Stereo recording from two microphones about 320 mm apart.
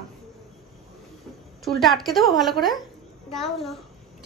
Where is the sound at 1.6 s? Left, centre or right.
Centre.